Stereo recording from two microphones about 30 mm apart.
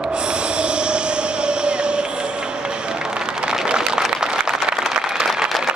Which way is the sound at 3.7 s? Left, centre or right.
Right.